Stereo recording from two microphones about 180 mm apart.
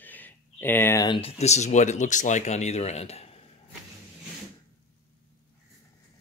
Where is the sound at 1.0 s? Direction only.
30° left (ahead or behind).